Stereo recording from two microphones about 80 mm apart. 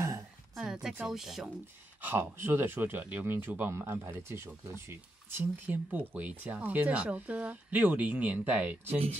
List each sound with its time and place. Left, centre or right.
0.6 s a sound: centre
1.0 s speech: centre
2.0 s speech: right